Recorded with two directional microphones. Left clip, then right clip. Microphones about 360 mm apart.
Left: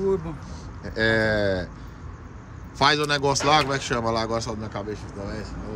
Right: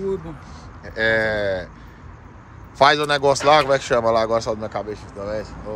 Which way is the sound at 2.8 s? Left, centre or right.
Centre.